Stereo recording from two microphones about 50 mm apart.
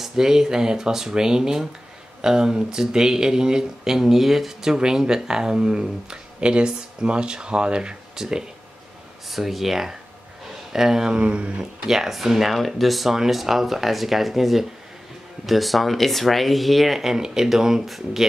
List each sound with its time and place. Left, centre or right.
0.0 s speech: centre
9.3 s speech: centre
11.1 s a sound: right
11.9 s speech: centre